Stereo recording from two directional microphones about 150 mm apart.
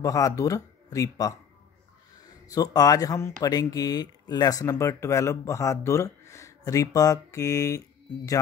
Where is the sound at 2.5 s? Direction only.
25° left (ahead or behind).